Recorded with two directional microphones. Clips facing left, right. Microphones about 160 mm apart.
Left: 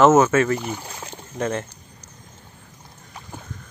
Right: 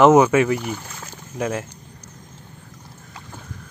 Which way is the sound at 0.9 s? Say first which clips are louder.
Left 2 dB; 25° left (ahead or behind).